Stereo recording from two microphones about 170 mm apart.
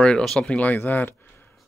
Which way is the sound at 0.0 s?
5° left (ahead or behind).